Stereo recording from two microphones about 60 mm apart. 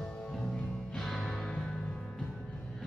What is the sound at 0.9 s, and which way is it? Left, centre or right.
Music, centre.